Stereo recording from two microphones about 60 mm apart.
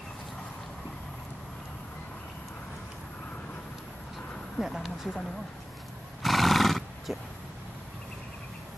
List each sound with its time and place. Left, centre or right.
4.6 s speech: centre
6.2 s neigh: centre